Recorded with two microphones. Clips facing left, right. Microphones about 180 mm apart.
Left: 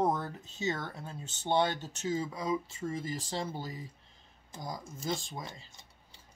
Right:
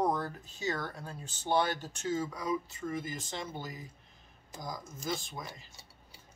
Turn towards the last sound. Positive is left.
turn(degrees=25)  # may be behind; listen again after turning